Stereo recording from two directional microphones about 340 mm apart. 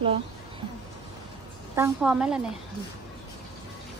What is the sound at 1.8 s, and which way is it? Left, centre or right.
Speech, centre.